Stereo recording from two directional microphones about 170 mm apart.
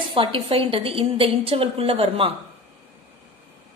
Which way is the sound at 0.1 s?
30° right (ahead or behind).